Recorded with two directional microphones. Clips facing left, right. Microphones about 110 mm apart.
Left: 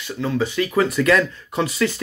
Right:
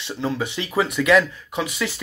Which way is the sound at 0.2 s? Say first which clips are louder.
Left 4 dB; 25° right (ahead or behind).